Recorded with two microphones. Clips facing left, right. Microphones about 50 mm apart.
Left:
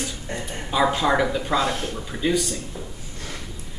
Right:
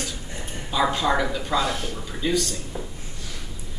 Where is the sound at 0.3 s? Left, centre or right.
Left.